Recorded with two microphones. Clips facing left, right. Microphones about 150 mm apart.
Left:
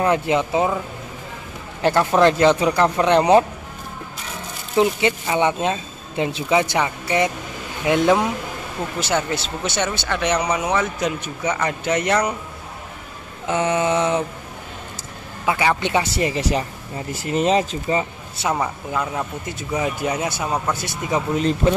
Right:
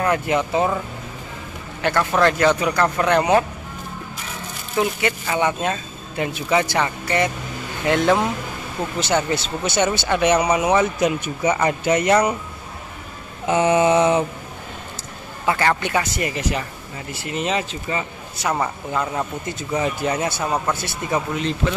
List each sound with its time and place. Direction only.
0.0 s speech: 20° left (ahead or behind)
1.8 s speech: 30° left (ahead or behind)
4.7 s speech: 20° left (ahead or behind)
9.0 s speech: centre (ahead or behind)
9.8 s speech: 10° right (ahead or behind)
13.5 s speech: 10° right (ahead or behind)
15.4 s speech: 10° left (ahead or behind)
15.8 s speech: 25° left (ahead or behind)
18.5 s speech: 5° left (ahead or behind)
21.4 s speech: 40° left (ahead or behind)